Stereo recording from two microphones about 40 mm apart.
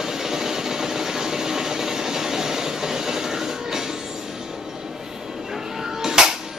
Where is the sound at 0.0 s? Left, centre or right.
Centre.